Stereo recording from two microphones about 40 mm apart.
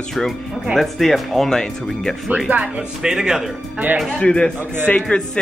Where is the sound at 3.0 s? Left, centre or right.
Centre.